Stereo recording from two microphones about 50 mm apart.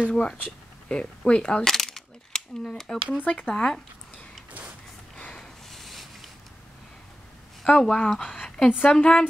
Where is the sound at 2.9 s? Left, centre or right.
Left.